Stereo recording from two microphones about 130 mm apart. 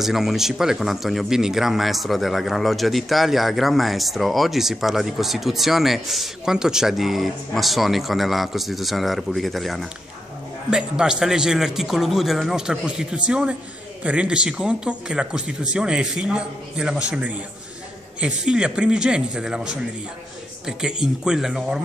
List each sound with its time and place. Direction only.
0.0 s speech: centre (ahead or behind)